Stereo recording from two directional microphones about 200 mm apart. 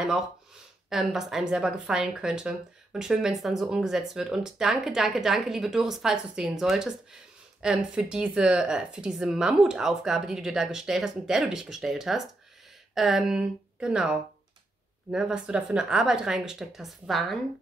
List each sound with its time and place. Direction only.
0.8 s a woman's voice: centre (ahead or behind)